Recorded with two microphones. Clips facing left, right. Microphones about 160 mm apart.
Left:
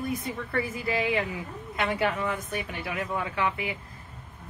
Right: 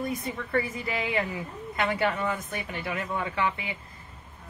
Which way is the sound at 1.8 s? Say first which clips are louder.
Even; centre (ahead or behind).